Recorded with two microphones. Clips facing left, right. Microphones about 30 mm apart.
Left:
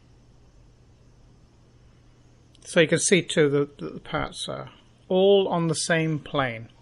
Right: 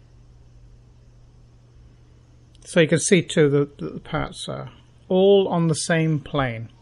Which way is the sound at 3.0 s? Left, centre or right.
Centre.